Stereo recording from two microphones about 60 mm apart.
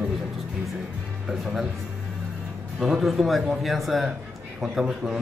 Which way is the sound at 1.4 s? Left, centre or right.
Centre.